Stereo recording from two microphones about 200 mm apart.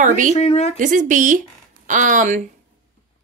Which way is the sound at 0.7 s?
40° right (ahead or behind).